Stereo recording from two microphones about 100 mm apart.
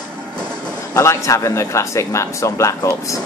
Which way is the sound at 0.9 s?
30° left (ahead or behind).